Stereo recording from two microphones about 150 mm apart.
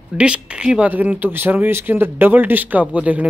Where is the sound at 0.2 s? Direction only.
5° right (ahead or behind).